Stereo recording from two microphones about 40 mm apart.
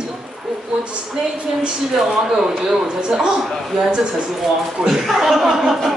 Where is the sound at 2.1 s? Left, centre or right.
Centre.